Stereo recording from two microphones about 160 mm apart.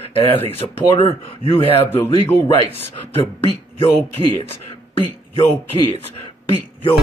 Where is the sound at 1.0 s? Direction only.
35° left (ahead or behind).